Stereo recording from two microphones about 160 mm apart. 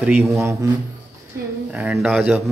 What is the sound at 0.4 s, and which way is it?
Speech, 20° right (ahead or behind).